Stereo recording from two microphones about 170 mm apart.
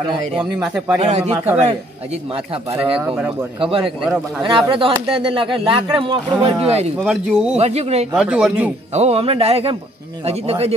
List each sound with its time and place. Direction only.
0.4 s speech: 5° right (ahead or behind)
1.0 s speech: 40° right (ahead or behind)
2.8 s speech: 5° right (ahead or behind)
3.5 s speech: 30° right (ahead or behind)
4.0 s speech: centre (ahead or behind)
4.6 s speech: 30° right (ahead or behind)
7.0 s speech: 5° right (ahead or behind)
7.5 s speech: 40° right (ahead or behind)
8.1 s speech: 5° right (ahead or behind)
8.9 s speech: 35° right (ahead or behind)